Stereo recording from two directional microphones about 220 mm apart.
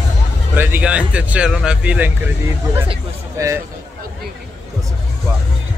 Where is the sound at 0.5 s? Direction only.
10° right (ahead or behind).